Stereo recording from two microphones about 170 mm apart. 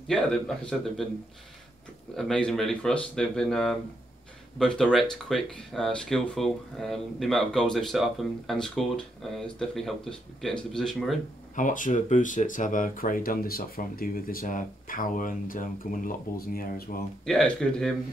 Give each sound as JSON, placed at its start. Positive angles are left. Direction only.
{"t": 0.1, "sound": "speech", "side_deg": 5}
{"t": 2.1, "sound": "speech", "side_deg": 5}
{"t": 11.5, "sound": "speech", "side_deg": 50}
{"t": 17.2, "sound": "speech", "side_deg": 5}